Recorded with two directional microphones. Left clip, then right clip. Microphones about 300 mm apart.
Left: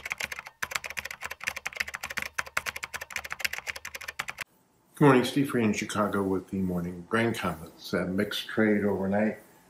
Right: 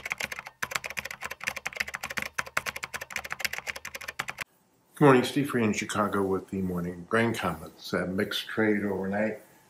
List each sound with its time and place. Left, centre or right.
0.0 s typing: centre
4.9 s speech: centre